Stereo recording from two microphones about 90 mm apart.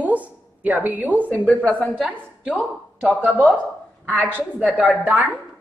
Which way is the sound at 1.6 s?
10° left (ahead or behind).